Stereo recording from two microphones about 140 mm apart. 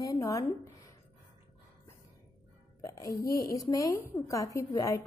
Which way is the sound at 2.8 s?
25° left (ahead or behind).